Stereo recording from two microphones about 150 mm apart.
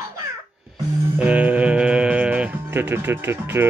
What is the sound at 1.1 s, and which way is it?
Speech, 10° right (ahead or behind).